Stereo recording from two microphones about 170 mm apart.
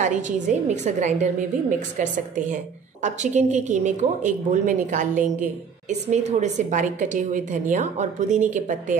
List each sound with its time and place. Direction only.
0.0 s a woman's voice: 45° right (ahead or behind)